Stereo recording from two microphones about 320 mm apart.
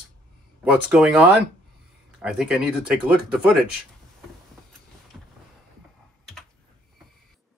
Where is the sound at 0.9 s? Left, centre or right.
Centre.